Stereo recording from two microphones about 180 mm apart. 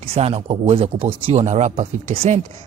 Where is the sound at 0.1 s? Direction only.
30° right (ahead or behind).